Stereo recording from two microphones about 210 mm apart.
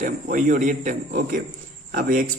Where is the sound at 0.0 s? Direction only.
35° right (ahead or behind).